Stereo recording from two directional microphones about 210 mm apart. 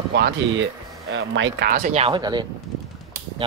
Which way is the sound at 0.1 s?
55° right (ahead or behind).